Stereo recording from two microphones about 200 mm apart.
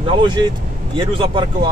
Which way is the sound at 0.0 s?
25° right (ahead or behind).